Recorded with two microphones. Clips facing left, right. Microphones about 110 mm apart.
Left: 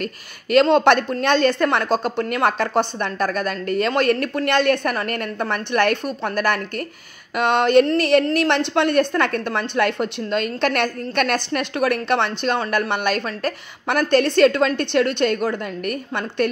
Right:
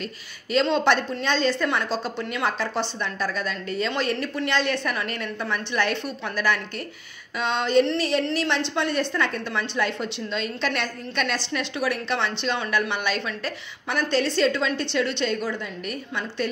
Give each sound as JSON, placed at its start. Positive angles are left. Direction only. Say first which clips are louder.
{"t": 0.0, "sound": "a woman's voice", "louder": "left 6 dB", "side_deg": 60}